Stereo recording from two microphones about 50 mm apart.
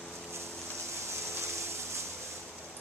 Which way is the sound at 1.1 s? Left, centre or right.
Right.